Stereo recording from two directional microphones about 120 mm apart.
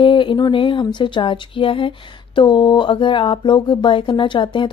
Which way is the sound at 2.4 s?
40° left (ahead or behind).